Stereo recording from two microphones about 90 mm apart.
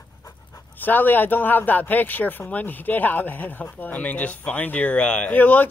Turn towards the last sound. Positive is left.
turn(degrees=20)  # may be behind; listen again after turning